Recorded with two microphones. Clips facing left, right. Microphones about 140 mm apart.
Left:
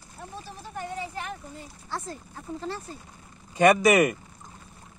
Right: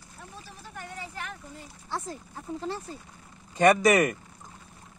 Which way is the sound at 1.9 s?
15° right (ahead or behind).